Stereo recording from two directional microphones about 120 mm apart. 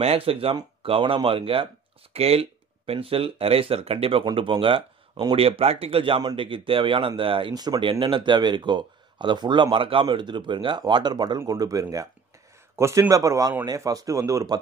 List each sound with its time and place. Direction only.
0.0 s speech: 55° right (ahead or behind); by 7.9 s 35° right (ahead or behind)
7.9 s speech: 45° right (ahead or behind)